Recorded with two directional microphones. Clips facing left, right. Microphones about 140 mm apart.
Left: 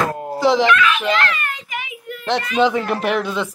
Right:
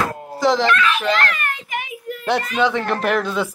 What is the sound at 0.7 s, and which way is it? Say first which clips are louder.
A child's voice: left 1 dB; 35° right (ahead or behind).